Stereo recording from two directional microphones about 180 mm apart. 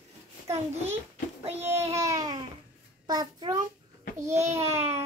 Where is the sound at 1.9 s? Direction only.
15° right (ahead or behind).